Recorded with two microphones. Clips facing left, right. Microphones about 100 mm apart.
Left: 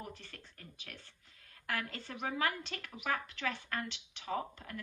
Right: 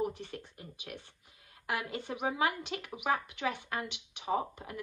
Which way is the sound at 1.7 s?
15° right (ahead or behind).